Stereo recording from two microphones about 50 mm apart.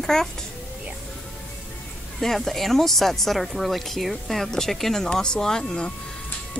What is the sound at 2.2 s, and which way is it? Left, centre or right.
Speech, centre.